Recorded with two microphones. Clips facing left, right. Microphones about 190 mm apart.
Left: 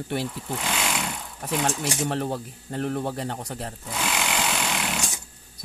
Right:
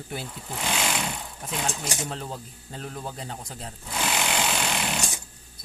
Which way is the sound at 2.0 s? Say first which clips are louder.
Left 7 dB; 70° left (ahead or behind).